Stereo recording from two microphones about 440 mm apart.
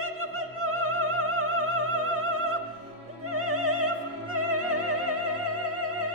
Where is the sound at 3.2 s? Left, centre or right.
Right.